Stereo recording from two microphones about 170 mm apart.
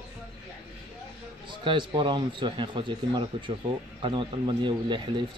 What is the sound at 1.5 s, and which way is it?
Speech, 30° right (ahead or behind).